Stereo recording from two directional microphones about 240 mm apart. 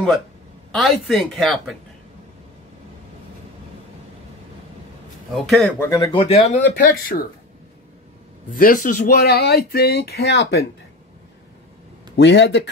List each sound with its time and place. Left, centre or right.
0.7 s speech: centre
5.3 s speech: centre
5.8 s speech: centre
6.7 s speech: left
8.5 s speech: left
12.2 s speech: left